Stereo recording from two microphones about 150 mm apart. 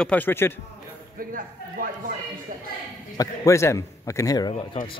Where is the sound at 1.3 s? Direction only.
65° right (ahead or behind).